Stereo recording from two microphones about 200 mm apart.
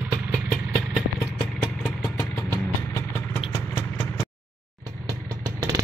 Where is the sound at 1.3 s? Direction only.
5° left (ahead or behind).